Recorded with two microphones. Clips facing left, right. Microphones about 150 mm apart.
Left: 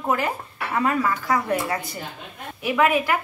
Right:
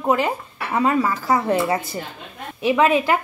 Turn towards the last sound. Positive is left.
turn(degrees=-25)  # may be behind; listen again after turning